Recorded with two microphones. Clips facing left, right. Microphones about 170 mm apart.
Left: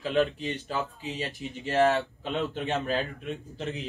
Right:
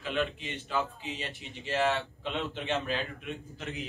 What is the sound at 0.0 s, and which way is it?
Speech, 35° left (ahead or behind).